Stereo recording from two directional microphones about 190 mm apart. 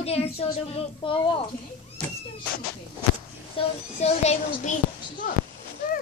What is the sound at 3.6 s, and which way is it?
A child's voice, 35° left (ahead or behind).